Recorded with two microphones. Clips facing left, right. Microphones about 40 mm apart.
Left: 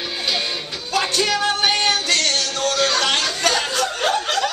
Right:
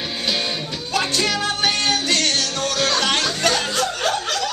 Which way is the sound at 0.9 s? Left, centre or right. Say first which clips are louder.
Left 1 dB; centre.